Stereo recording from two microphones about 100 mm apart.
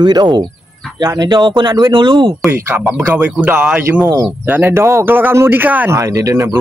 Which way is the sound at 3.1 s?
15° right (ahead or behind).